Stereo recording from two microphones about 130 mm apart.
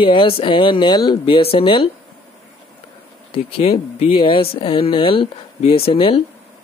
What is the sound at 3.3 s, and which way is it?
Speech, 45° left (ahead or behind).